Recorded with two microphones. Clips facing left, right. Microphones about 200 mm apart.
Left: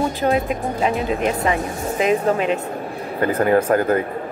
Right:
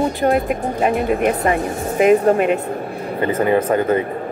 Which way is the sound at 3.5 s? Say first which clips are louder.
Even; centre (ahead or behind).